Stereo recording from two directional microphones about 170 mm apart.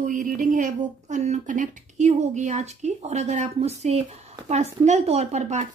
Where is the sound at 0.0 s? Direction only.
50° right (ahead or behind).